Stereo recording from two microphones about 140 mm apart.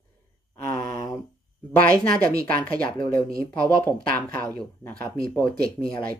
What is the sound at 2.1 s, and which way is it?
Speech, 90° right.